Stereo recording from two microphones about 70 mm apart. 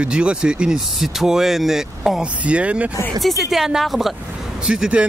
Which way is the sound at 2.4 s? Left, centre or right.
Centre.